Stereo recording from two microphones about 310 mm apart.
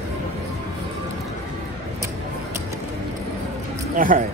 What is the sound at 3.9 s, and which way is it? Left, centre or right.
Speech, right.